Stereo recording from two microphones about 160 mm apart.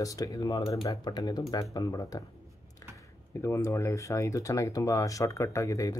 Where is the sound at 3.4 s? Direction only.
20° left (ahead or behind).